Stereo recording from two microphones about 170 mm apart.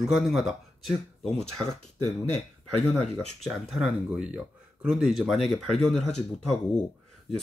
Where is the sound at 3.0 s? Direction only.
Centre (ahead or behind).